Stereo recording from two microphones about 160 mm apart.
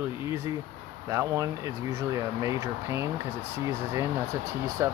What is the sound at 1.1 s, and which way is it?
Speech, 20° right (ahead or behind).